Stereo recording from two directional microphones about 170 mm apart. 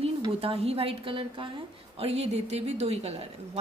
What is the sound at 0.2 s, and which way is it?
A woman's voice, 35° right (ahead or behind).